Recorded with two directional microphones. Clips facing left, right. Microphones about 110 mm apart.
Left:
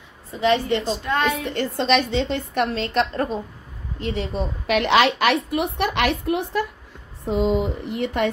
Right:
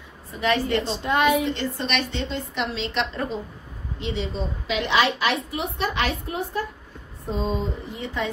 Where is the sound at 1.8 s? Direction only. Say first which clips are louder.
Left 7 dB; 80° left.